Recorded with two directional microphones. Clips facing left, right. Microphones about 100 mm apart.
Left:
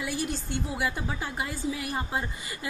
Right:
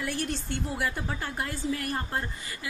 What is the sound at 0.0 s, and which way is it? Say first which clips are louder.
A woman's voice: even; 5° left (ahead or behind).